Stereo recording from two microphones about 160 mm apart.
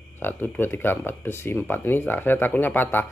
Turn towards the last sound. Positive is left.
turn(degrees=10)  # may be behind; listen again after turning